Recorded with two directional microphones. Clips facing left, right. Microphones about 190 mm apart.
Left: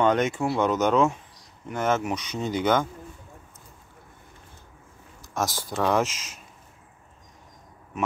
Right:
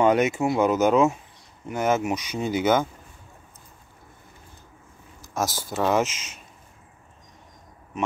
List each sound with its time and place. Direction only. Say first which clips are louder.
0.0 s speech: right 2 dB; 10° right (ahead or behind)
5.2 s speech: right 1 dB; centre (ahead or behind)
6.0 s speech: even; 35° left (ahead or behind)